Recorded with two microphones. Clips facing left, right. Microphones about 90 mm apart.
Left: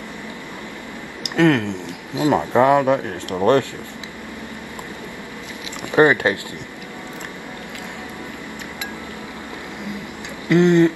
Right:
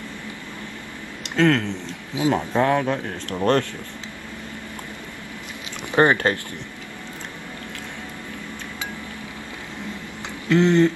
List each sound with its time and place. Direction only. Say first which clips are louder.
1.2 s speech: left 3 dB; 15° left (ahead or behind)
5.9 s speech: left 3 dB; 15° left (ahead or behind)
10.5 s speech: left 3 dB; 15° left (ahead or behind)